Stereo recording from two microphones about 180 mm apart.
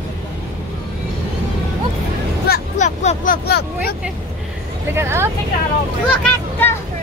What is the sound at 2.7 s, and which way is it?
Vehicle, 40° left (ahead or behind).